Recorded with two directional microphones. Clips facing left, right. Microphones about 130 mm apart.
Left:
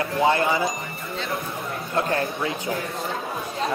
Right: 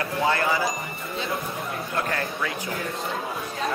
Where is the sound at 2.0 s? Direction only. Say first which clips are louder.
Left 5 dB; 25° left (ahead or behind).